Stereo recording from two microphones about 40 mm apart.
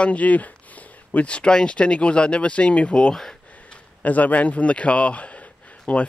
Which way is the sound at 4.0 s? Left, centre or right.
Left.